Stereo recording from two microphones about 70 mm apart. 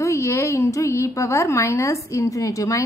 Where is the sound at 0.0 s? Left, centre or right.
Left.